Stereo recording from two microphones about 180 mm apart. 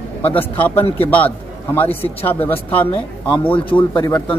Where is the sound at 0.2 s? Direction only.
10° left (ahead or behind).